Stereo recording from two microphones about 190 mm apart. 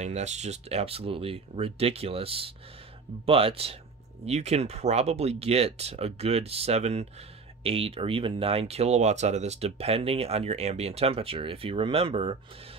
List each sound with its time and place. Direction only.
0.0 s speech: 35° right (ahead or behind)